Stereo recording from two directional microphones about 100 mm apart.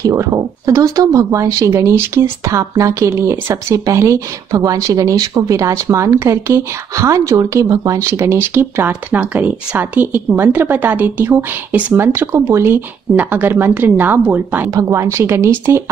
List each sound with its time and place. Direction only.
0.0 s speech: 35° right (ahead or behind)
14.7 s speech: 30° right (ahead or behind)